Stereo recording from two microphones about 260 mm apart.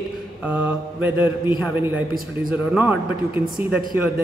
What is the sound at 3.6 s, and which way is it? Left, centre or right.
Speech, centre.